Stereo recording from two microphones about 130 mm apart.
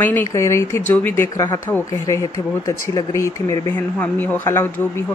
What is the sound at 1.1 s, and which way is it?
Speech, 25° left (ahead or behind).